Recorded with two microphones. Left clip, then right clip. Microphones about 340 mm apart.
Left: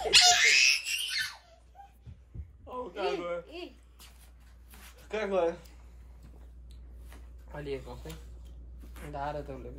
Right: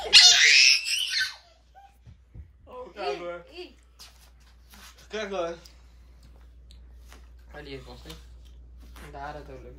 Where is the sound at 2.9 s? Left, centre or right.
Left.